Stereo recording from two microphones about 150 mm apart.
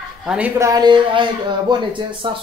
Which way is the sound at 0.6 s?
25° right (ahead or behind).